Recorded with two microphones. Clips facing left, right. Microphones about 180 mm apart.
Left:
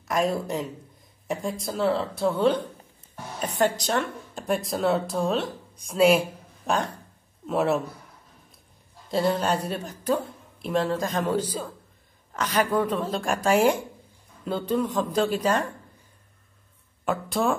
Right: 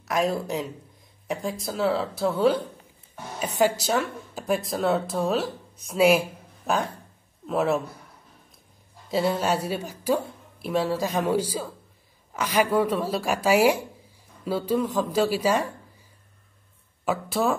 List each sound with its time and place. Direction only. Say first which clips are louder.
0.1 s a woman's voice: even; centre (ahead or behind)
9.1 s a woman's voice: even; 5° right (ahead or behind)
17.0 s speech: even; centre (ahead or behind)